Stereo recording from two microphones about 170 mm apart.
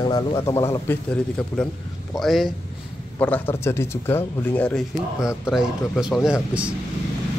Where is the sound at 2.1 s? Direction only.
Centre (ahead or behind).